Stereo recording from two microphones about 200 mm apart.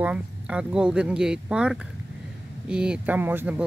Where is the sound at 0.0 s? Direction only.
5° right (ahead or behind).